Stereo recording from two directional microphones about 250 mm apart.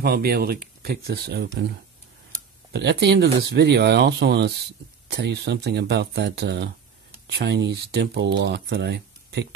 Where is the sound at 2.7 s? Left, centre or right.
Right.